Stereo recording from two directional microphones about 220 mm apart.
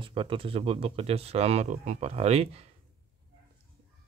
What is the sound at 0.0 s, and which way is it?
Speech, 25° right (ahead or behind).